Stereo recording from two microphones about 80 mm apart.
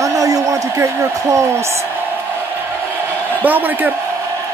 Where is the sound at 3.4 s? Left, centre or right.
Right.